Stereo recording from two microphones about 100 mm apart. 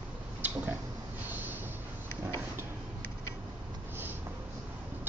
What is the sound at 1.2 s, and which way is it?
Train, 20° right (ahead or behind).